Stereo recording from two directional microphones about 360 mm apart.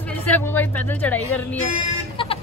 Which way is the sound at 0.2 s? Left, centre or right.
Centre.